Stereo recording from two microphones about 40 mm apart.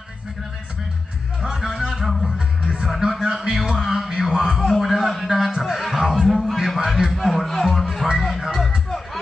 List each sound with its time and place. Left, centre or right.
1.6 s a sound: centre
2.0 s music: centre
2.3 s music: centre
3.0 s speech: centre
3.7 s speech: centre
4.1 s speech: centre
4.6 s a man's voice: centre
5.3 s speech: centre
5.6 s music: centre
6.2 s a sound: centre
7.6 s music: centre